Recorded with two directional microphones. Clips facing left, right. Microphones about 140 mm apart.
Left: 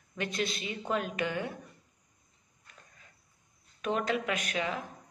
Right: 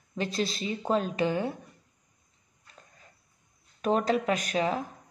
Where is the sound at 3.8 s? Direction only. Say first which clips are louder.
Right 5 dB; 35° right (ahead or behind).